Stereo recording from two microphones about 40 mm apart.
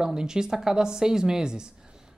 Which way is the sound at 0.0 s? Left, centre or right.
Centre.